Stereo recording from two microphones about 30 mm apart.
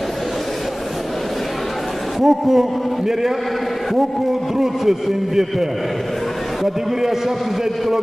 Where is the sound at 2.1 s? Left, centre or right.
Centre.